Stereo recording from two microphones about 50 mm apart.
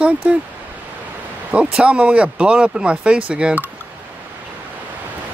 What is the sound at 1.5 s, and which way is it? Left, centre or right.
Speech, right.